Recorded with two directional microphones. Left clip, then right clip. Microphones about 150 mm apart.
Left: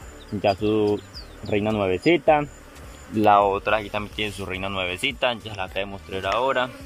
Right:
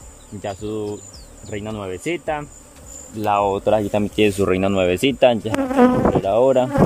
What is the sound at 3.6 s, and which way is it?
Speech, 55° right (ahead or behind).